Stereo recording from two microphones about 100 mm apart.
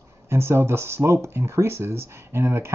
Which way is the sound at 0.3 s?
25° right (ahead or behind).